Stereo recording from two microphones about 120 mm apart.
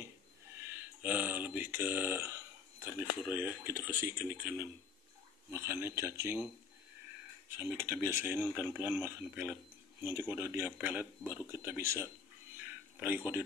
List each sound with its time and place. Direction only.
0.7 s speech: 15° right (ahead or behind)
7.4 s speech: 15° right (ahead or behind)
12.6 s a sound: 15° right (ahead or behind)